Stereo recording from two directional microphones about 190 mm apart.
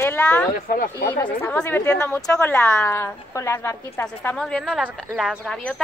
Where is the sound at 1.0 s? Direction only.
10° left (ahead or behind).